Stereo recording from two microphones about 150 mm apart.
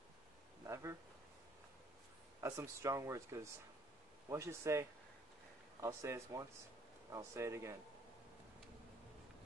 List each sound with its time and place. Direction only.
2.4 s speech: 20° right (ahead or behind)